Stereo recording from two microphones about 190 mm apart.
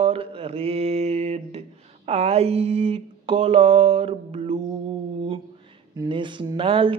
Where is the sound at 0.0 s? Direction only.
30° right (ahead or behind).